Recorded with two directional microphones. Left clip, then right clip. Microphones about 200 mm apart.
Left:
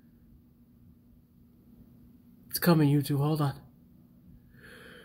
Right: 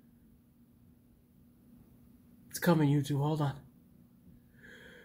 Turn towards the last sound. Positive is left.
turn(degrees=40)  # may be behind; listen again after turning